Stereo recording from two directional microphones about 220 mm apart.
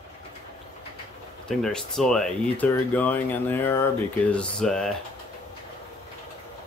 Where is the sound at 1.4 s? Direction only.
Centre (ahead or behind).